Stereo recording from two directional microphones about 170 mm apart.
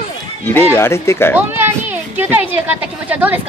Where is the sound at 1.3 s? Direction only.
10° right (ahead or behind).